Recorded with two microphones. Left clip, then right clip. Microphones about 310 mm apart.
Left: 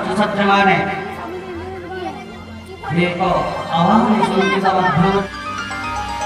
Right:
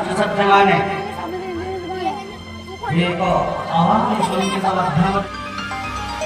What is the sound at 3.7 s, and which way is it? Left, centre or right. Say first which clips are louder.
Speech: left 2 dB; right.